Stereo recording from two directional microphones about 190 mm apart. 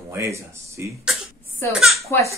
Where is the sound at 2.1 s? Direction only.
10° left (ahead or behind).